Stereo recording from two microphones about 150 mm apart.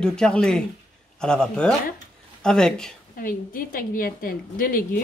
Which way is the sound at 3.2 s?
70° left (ahead or behind).